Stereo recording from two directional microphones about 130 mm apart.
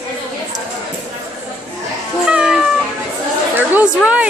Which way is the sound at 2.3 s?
5° right (ahead or behind).